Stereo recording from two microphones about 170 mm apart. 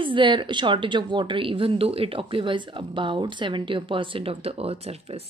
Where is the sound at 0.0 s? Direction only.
30° right (ahead or behind).